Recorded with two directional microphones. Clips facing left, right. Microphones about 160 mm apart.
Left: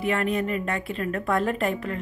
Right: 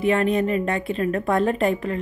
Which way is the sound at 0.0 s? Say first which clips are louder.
Right 5 dB; 25° right (ahead or behind).